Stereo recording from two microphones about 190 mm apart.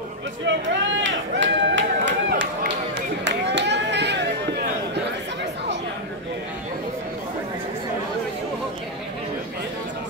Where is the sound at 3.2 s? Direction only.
65° right (ahead or behind).